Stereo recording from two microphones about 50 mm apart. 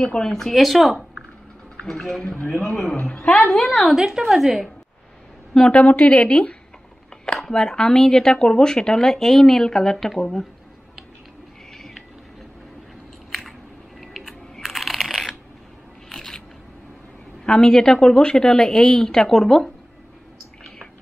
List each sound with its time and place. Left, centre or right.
0.0 s speech: centre
1.8 s speech: centre
6.0 s speech: left
7.3 s speech: centre
13.3 s a sound: centre
16.1 s scissors: centre
17.5 s speech: centre